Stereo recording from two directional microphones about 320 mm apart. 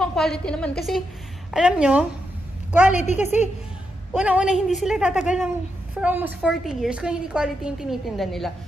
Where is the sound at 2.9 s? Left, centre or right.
Left.